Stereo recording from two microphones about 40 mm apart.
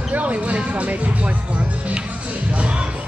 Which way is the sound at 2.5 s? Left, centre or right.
Right.